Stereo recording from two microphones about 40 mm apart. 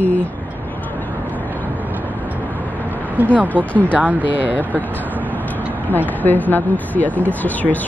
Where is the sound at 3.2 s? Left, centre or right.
Right.